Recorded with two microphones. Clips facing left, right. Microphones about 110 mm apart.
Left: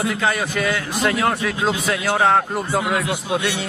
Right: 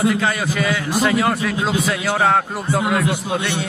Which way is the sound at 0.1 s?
Centre (ahead or behind).